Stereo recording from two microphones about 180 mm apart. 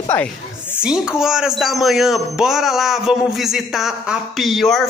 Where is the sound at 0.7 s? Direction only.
5° right (ahead or behind).